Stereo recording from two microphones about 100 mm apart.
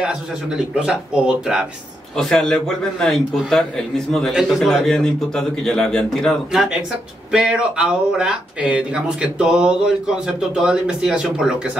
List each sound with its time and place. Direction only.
0.0 s speech: 10° right (ahead or behind)
2.1 s a man's voice: 5° left (ahead or behind)